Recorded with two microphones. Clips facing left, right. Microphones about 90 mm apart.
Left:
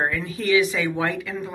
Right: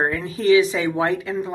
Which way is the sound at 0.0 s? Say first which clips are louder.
Right 4 dB; 30° right (ahead or behind).